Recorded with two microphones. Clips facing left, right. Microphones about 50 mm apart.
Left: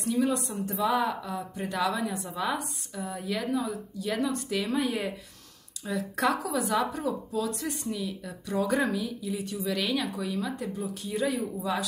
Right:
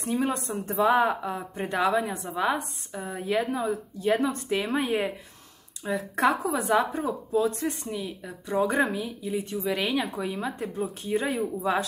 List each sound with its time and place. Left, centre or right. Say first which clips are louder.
0.0 s speech: even; right